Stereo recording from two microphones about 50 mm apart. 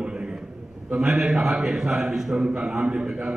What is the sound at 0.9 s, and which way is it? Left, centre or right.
A man's voice, centre.